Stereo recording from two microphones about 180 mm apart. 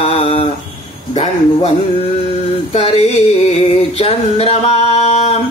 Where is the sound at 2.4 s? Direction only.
35° left (ahead or behind).